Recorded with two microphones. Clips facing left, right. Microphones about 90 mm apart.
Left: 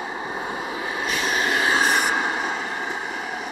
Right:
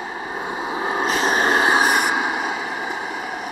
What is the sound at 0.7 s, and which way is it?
Vehicle, 35° right (ahead or behind).